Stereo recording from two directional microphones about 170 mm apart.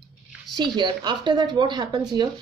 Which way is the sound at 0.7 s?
25° right (ahead or behind).